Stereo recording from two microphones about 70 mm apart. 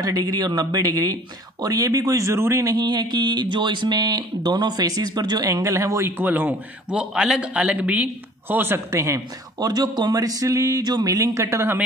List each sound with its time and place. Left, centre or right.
0.0 s speech: right
2.7 s speech: right
6.0 s a man's voice: right
6.9 s a man's voice: centre; by 8.8 s right
8.9 s speech: right
9.6 s speech: right
10.8 s speech: right
11.1 s speech: right
11.4 s speech: right